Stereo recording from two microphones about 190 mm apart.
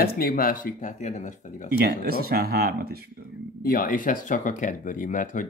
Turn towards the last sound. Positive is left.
turn(degrees=45)  # may be behind; listen again after turning